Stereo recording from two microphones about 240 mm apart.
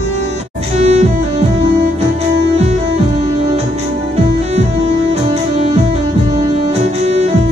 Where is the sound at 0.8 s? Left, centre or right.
Right.